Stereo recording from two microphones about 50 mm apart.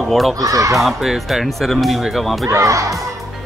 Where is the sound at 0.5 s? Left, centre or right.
Right.